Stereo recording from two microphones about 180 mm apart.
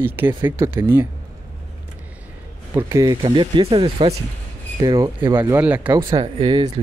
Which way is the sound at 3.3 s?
30° right (ahead or behind).